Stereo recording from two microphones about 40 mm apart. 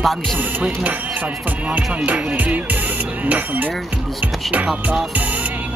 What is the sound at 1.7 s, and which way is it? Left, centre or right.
Speech, right.